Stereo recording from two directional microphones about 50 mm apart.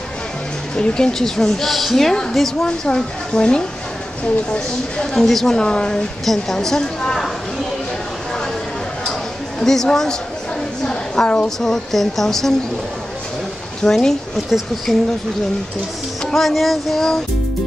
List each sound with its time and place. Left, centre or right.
0.7 s a woman's voice: centre
5.2 s a woman's voice: centre
6.2 s a woman's voice: centre
9.6 s a woman's voice: centre
10.8 s a sound: centre
11.4 s a woman's voice: centre
13.8 s a woman's voice: centre
14.9 s music: centre
16.3 s music: centre